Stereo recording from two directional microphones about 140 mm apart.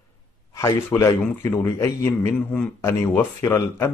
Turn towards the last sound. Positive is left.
turn(degrees=15)  # may be behind; listen again after turning